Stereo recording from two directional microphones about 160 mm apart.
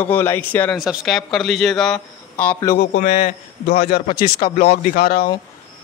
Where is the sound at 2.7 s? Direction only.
60° left (ahead or behind).